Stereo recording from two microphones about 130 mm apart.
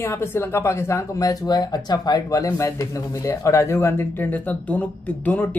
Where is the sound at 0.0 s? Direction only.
20° left (ahead or behind).